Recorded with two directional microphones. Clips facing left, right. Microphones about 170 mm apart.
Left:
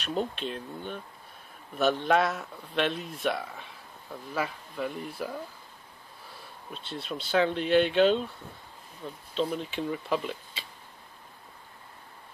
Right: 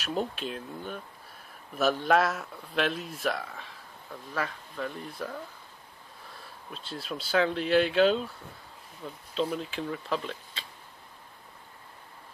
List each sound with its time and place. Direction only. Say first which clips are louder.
0.0 s speech: left 1 dB; 5° right (ahead or behind)
6.7 s speech: left 1 dB; centre (ahead or behind)
9.3 s speech: even; centre (ahead or behind)